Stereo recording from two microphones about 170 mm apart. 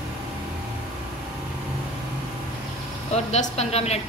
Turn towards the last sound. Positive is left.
turn(degrees=40)  # may be behind; listen again after turning